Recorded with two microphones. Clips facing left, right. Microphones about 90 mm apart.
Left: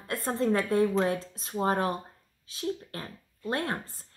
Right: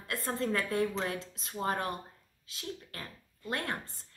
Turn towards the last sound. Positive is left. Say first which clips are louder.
# left 5 dB
turn(degrees=30)  # may be behind; listen again after turning